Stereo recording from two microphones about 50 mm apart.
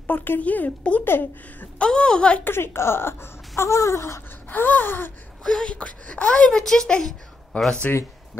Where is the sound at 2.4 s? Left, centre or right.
Left.